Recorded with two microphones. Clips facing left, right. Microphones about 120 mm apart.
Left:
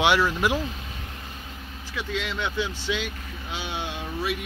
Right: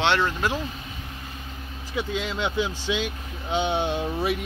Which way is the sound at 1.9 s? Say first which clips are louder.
Right 2 dB; 20° right (ahead or behind).